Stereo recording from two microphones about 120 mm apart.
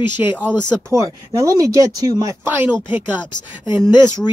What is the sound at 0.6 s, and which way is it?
Speech, 10° left (ahead or behind).